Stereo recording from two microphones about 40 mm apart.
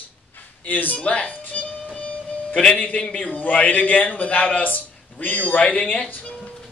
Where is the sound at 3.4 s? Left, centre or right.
Left.